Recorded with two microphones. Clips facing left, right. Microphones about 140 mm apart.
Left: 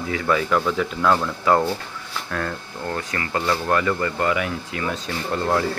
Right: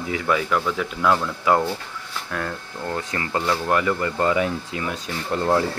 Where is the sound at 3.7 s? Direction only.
15° right (ahead or behind).